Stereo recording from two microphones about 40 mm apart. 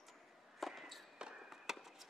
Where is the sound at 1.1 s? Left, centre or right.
Centre.